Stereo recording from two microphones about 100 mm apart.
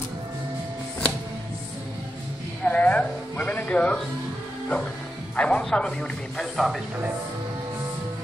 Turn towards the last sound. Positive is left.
turn(degrees=0)  # may be behind; listen again after turning